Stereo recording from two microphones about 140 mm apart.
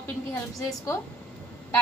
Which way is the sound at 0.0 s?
20° left (ahead or behind).